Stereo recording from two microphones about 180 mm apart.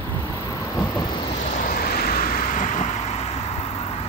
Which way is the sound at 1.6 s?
55° left (ahead or behind).